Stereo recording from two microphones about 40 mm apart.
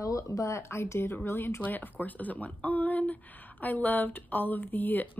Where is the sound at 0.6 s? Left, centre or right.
Left.